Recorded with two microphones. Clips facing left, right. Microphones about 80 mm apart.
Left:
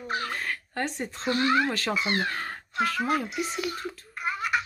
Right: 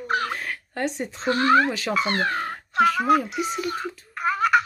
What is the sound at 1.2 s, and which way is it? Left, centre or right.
A child's voice, right.